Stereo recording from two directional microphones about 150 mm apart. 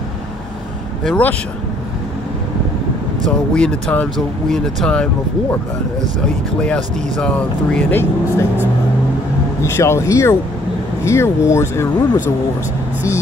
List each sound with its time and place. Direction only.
1.0 s speech: 10° left (ahead or behind)
3.3 s speech: 5° left (ahead or behind)
6.6 s speech: 5° left (ahead or behind)
9.6 s speech: 20° left (ahead or behind)